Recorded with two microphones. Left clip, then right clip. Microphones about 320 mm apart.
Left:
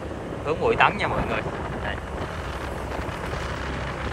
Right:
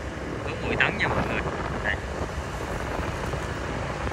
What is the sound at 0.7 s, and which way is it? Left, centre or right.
Speech, centre.